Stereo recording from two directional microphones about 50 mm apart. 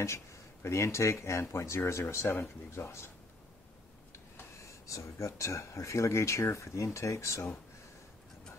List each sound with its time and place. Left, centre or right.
0.0 s speech: left
2.7 s speech: left
4.6 s speech: left
6.5 s speech: left